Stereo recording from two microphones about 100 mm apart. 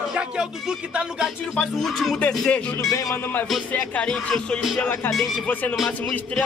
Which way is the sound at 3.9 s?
10° left (ahead or behind).